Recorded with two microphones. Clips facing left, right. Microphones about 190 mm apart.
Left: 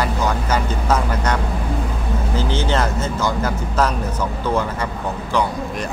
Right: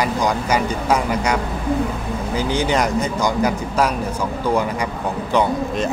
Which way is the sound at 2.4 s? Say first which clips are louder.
Right 2 dB; 15° right (ahead or behind).